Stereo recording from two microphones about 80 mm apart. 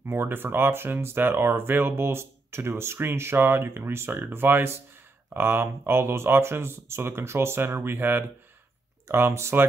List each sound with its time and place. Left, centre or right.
0.0 s speech: right